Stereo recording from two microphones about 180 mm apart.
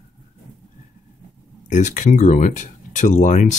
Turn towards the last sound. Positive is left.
turn(degrees=45)  # may be behind; listen again after turning